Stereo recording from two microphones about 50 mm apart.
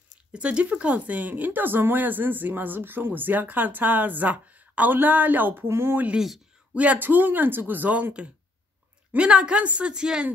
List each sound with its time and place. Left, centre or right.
0.3 s speech: right
5.7 s speech: right
6.1 s speech: centre
6.7 s speech: right
7.0 s a woman's voice: right; by 10.2 s centre